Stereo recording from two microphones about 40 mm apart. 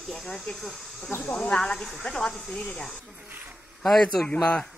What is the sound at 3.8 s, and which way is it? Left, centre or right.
Speech, centre.